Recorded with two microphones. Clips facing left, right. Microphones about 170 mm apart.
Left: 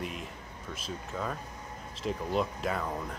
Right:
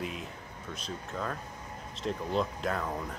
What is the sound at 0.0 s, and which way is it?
Speech, centre (ahead or behind).